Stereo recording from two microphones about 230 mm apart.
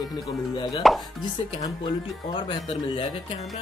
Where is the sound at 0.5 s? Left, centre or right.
Left.